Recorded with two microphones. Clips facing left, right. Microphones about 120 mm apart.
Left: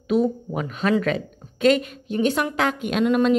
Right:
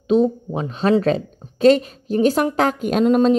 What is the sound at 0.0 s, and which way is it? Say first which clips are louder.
A woman's voice: right 4 dB; 25° right (ahead or behind).